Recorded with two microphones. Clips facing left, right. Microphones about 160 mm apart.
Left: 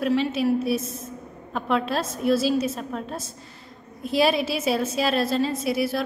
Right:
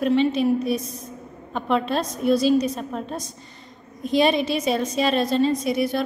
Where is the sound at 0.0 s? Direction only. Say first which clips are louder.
Right 3 dB; centre (ahead or behind).